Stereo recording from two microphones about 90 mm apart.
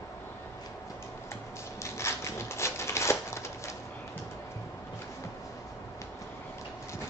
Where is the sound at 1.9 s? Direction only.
30° left (ahead or behind).